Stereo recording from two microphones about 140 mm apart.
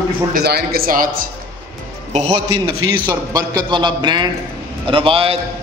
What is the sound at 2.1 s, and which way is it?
Speech, 45° right (ahead or behind).